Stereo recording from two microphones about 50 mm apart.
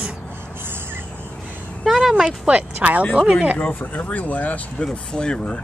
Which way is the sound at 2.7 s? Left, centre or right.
Right.